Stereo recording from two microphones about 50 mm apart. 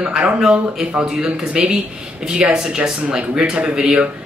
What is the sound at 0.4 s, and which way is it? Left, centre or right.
A man's voice, centre.